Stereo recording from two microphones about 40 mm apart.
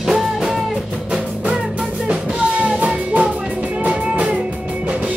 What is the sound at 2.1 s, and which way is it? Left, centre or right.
Music, right.